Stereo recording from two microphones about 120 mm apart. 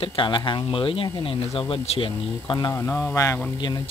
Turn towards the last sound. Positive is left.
turn(degrees=35)  # may be behind; listen again after turning